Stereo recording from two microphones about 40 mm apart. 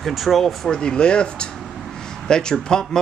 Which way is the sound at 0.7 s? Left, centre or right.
Left.